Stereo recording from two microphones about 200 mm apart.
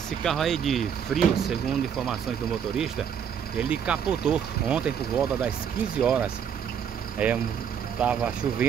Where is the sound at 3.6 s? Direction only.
5° right (ahead or behind).